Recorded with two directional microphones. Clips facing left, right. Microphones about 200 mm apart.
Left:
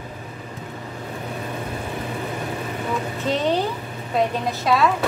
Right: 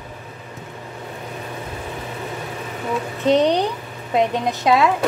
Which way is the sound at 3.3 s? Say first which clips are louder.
Right 4 dB; 20° right (ahead or behind).